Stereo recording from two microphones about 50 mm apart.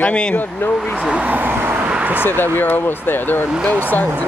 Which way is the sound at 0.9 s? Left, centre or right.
Right.